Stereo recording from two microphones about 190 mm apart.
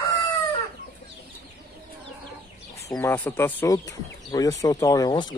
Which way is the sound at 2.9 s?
10° left (ahead or behind).